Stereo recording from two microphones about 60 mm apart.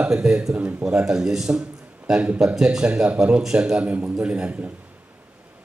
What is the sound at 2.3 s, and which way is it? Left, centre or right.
A man's voice, centre.